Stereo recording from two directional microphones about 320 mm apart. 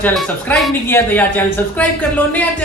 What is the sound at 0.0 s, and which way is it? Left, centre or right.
Speech, centre.